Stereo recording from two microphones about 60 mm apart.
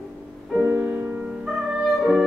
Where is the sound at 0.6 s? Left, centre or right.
Right.